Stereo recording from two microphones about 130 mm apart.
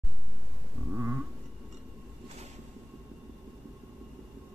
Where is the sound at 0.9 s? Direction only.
5° right (ahead or behind).